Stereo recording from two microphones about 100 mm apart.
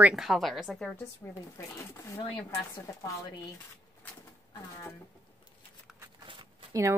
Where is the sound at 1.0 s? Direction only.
25° left (ahead or behind).